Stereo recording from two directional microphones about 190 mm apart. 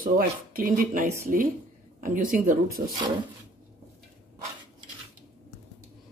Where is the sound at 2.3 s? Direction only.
45° right (ahead or behind).